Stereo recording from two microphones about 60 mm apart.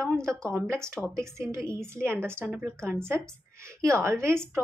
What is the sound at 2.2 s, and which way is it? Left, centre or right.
Speech, right.